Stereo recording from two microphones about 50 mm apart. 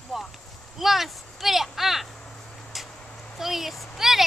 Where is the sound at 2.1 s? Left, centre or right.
Centre.